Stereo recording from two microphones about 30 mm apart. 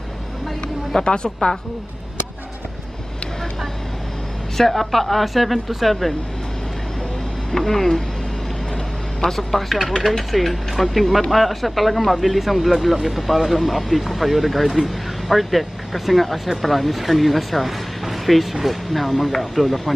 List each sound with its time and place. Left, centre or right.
1.0 s a woman's voice: left
4.6 s speech: centre
7.5 s speech: centre
9.3 s speech: centre